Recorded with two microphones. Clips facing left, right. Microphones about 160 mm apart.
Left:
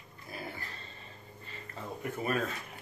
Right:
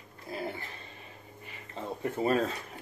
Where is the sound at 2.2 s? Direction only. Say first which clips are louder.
Right 5 dB; 30° right (ahead or behind).